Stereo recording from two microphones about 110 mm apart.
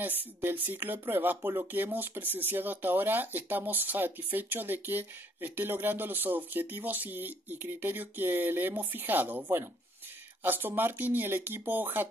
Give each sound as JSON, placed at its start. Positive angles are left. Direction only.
{"t": 0.0, "sound": "speech", "side_deg": -15}